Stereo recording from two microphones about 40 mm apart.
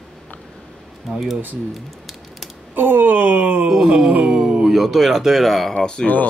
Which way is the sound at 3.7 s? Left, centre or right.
Centre.